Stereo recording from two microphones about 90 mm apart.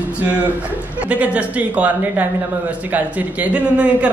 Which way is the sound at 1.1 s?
15° right (ahead or behind).